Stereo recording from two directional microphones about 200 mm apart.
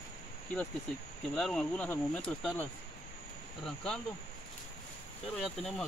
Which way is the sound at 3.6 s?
5° left (ahead or behind).